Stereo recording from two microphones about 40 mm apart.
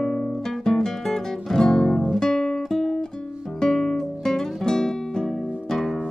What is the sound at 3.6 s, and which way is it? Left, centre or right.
Music, centre.